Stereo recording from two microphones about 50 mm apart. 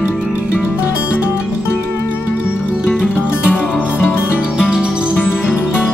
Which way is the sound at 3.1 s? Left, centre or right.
Left.